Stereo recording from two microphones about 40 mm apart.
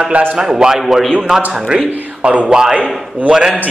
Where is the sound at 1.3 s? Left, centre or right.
Centre.